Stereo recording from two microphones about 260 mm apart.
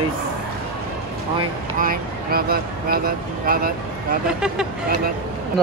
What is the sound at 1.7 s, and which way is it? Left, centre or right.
Speech, right.